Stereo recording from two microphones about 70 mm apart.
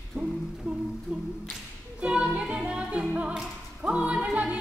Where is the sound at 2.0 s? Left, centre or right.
Centre.